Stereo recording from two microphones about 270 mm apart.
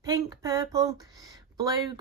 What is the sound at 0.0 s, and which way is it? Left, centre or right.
Speech, centre.